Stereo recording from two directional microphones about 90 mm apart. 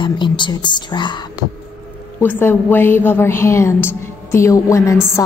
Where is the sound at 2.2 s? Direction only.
20° left (ahead or behind).